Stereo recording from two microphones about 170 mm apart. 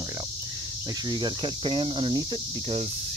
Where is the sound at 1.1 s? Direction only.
25° right (ahead or behind).